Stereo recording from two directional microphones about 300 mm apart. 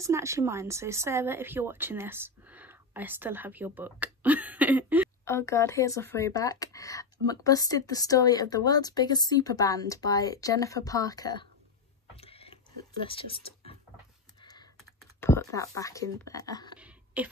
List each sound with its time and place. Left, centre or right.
0.0 s speech: centre
5.2 s speech: centre
12.2 s a sound: centre
13.0 s speech: centre
15.1 s speech: centre
16.8 s a sound: centre